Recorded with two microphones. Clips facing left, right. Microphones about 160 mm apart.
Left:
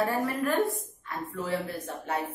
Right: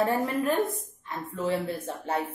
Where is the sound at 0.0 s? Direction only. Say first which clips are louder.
Right 2 dB; 20° right (ahead or behind).